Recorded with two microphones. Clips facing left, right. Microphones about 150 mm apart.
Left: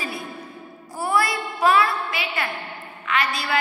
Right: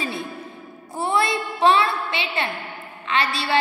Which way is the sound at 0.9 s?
25° right (ahead or behind).